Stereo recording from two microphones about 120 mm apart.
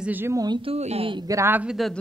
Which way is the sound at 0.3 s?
30° right (ahead or behind).